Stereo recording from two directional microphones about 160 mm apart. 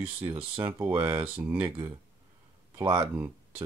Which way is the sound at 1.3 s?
10° right (ahead or behind).